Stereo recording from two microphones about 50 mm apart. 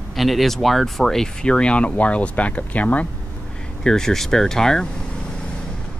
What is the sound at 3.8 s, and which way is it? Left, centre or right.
Speech, centre.